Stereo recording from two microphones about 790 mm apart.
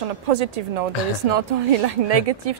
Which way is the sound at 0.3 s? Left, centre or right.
Right.